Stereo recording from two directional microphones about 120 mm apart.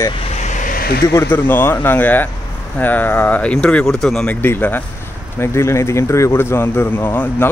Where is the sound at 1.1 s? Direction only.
15° left (ahead or behind).